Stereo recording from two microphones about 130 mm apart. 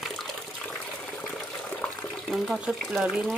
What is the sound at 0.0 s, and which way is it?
Water, centre (ahead or behind).